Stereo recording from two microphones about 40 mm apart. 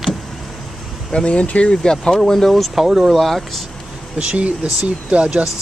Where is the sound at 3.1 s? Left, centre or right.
Centre.